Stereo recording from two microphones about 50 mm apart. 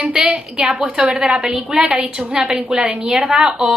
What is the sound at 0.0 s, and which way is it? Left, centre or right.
A woman's voice, centre.